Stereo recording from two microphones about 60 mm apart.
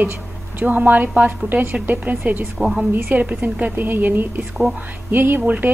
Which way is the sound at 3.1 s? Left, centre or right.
Right.